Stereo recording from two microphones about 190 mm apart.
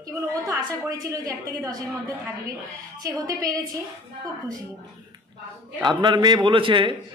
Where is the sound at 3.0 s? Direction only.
20° right (ahead or behind).